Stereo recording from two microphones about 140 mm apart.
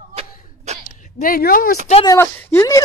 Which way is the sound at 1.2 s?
90° left.